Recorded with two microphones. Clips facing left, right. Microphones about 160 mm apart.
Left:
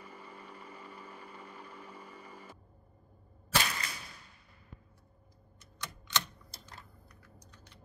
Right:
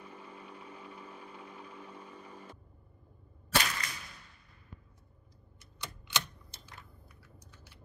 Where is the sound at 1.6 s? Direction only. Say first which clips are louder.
Right 1 dB; 10° left (ahead or behind).